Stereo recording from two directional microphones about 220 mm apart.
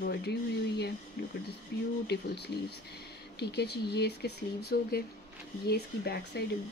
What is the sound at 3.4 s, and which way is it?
Speech, 50° left (ahead or behind).